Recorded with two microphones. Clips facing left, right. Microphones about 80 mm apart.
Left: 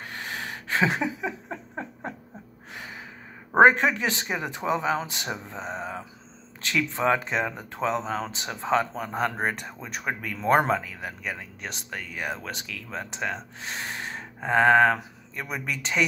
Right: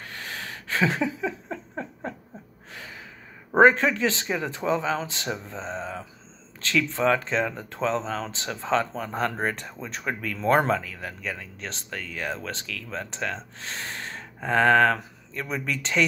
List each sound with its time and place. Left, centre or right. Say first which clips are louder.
0.0 s a sound: left 2 dB; left
2.7 s gasp: left 2 dB; left
3.5 s speech: even; left